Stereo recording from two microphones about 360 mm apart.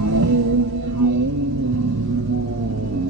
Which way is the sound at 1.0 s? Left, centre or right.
Right.